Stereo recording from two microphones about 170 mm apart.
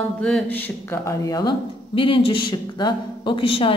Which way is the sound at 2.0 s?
30° left (ahead or behind).